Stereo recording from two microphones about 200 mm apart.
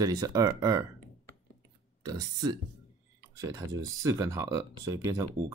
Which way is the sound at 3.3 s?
15° right (ahead or behind).